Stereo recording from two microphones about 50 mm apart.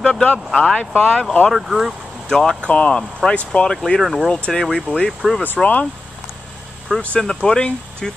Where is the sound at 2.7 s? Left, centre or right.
Left.